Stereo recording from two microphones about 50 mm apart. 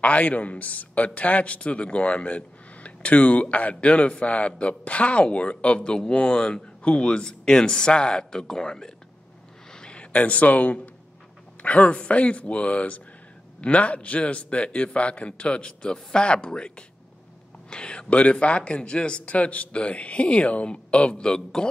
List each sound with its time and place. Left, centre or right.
0.0 s a man's voice: left; by 8.9 s centre
9.7 s a sound: centre
11.6 s a man's voice: left